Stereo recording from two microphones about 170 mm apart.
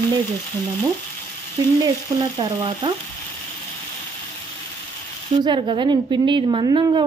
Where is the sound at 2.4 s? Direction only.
25° right (ahead or behind).